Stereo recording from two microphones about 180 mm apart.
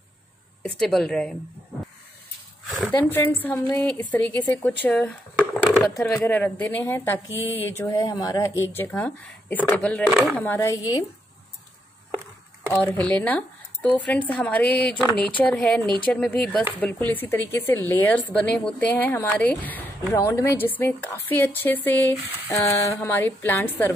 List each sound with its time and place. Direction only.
0.6 s a woman's voice: 5° left (ahead or behind)
3.1 s speech: 10° left (ahead or behind)
5.6 s a sound: centre (ahead or behind)
6.1 s speech: 10° left (ahead or behind)
7.2 s speech: 10° right (ahead or behind)
7.5 s speech: 10° left (ahead or behind)
10.3 s speech: 10° left (ahead or behind)
12.7 s a woman's voice: 5° left (ahead or behind)